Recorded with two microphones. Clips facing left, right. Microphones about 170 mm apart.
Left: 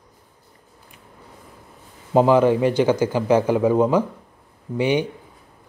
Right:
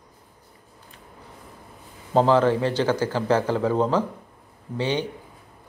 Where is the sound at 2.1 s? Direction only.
15° left (ahead or behind).